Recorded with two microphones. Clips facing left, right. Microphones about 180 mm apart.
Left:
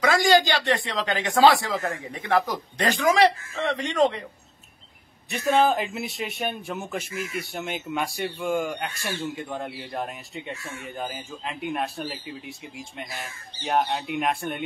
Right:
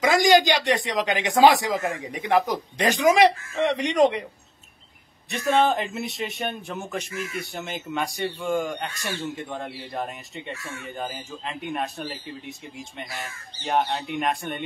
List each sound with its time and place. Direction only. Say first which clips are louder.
0.0 s a man's voice: right 2 dB; 20° right (ahead or behind)
5.3 s a man's voice: even; centre (ahead or behind)